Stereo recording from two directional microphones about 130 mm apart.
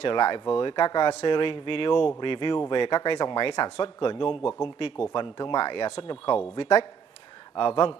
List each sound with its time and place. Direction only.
0.0 s speech: 35° left (ahead or behind)